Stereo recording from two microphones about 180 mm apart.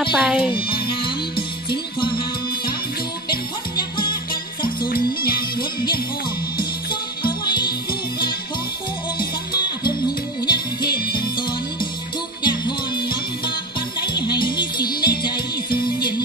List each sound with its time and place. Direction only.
0.1 s a child's voice: 5° right (ahead or behind)
0.5 s music: 30° left (ahead or behind)
4.8 s music: 55° left (ahead or behind)
6.9 s music: 25° left (ahead or behind)
9.2 s music: 25° left (ahead or behind)
10.9 s music: 60° left (ahead or behind)
11.1 s music: 25° left (ahead or behind)